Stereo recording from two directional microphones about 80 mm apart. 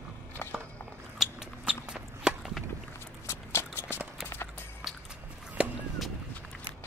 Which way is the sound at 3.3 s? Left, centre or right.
Left.